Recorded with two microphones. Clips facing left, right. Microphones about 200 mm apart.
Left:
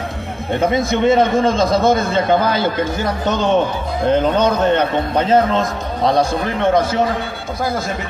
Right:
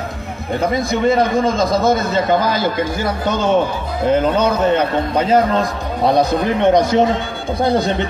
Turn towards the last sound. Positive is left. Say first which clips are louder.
# right 3 dB
turn(degrees=-20)  # may be behind; listen again after turning